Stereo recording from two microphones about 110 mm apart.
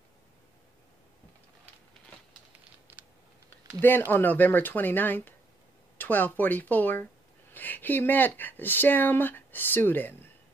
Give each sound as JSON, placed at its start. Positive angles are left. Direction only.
{"t": 3.4, "sound": "speech", "side_deg": 15}